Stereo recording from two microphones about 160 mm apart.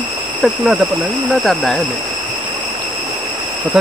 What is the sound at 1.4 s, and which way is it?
Speech, centre (ahead or behind).